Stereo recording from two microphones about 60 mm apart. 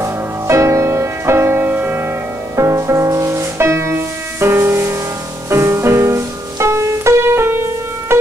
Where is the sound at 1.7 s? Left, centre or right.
Right.